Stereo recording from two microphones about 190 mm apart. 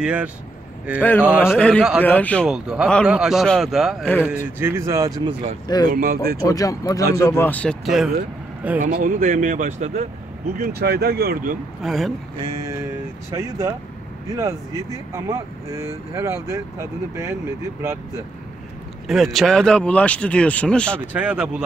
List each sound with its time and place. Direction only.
0.0 s speech: 5° right (ahead or behind)
1.4 s speech: 10° left (ahead or behind)
2.4 s speech: 5° right (ahead or behind)
4.6 s speech: 15° right (ahead or behind)
5.9 s speech: 50° right (ahead or behind)
6.4 s speech: 20° left (ahead or behind); by 8.1 s centre (ahead or behind)
8.7 s speech: 45° right (ahead or behind)
10.6 s speech: 55° right (ahead or behind)
11.8 s speech: centre (ahead or behind)
12.4 s speech: 15° right (ahead or behind)
19.0 s speech: centre (ahead or behind)
21.1 s speech: 5° right (ahead or behind)